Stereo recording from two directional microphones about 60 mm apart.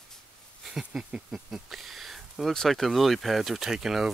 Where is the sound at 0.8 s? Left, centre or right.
Centre.